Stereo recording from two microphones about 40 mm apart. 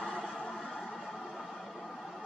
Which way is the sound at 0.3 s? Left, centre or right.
Left.